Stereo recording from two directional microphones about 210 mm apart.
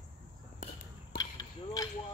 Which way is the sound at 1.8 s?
15° left (ahead or behind).